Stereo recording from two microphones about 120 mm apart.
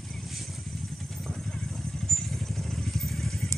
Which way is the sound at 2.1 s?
5° left (ahead or behind).